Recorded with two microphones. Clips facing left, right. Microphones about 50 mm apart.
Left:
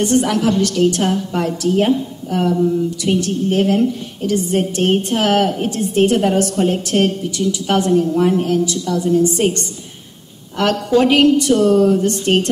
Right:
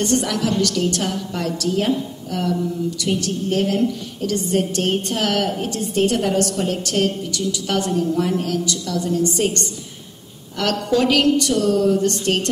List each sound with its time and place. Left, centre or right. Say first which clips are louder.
0.0 s a woman's voice: left 5 dB; left
10.6 s a woman's voice: left 4 dB; left